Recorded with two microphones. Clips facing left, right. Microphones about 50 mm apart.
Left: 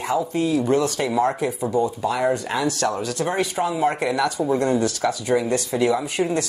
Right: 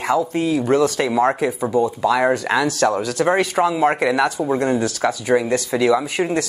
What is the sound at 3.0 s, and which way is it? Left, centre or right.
Speech, right.